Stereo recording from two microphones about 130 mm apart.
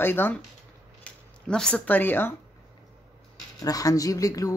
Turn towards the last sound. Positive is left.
turn(degrees=25)  # may be behind; listen again after turning